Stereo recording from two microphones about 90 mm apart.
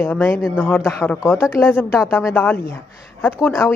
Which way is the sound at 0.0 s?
25° left (ahead or behind).